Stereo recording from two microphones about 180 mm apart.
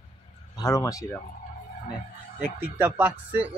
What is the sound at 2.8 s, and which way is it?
Speech, 10° right (ahead or behind).